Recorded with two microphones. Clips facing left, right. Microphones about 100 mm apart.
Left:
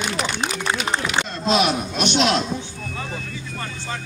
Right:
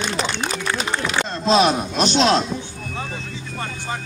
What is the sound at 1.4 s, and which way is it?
Speech, 35° right (ahead or behind).